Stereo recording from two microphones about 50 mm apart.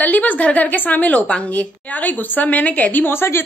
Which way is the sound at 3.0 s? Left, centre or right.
Left.